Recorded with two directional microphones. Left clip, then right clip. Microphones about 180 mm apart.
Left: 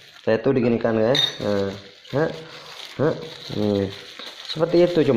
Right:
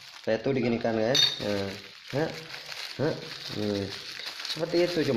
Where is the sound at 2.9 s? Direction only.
10° left (ahead or behind).